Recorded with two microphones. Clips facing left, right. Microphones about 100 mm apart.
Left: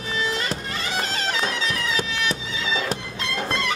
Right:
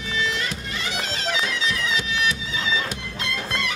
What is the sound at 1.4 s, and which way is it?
Bagpipes, 40° left (ahead or behind).